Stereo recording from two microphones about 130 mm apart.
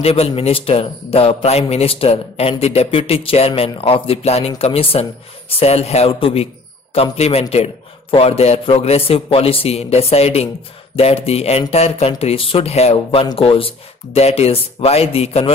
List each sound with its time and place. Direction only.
0.0 s a man's voice: 50° left (ahead or behind)